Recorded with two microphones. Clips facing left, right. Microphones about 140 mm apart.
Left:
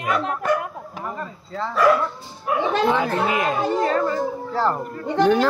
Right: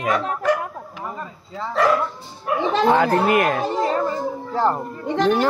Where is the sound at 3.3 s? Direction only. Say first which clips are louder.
Right 4 dB; 65° right (ahead or behind).